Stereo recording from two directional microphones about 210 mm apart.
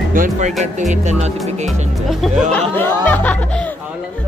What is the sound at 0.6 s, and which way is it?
Speech, 35° right (ahead or behind).